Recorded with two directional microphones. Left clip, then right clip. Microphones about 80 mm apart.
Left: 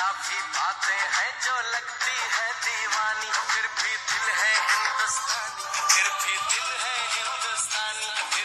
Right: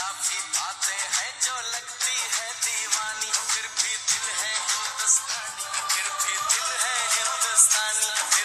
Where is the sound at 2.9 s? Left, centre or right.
Left.